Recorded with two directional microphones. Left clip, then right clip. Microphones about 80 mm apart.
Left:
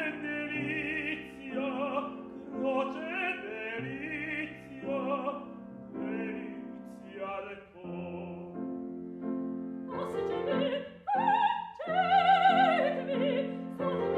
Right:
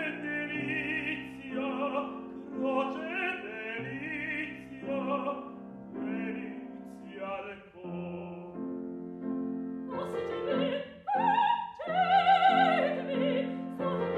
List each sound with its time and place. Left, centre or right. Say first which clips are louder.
0.2 s music: right 1 dB; left
2.5 s opera: even; left
6.0 s music: even; left
9.8 s music: left 1 dB; centre